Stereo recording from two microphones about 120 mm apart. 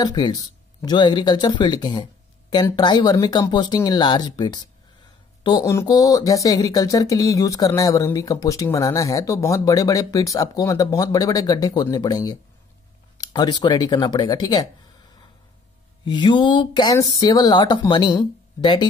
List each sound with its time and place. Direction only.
0.0 s speech: 35° left (ahead or behind)
5.7 s speech: 25° left (ahead or behind)
16.1 s speech: 40° left (ahead or behind)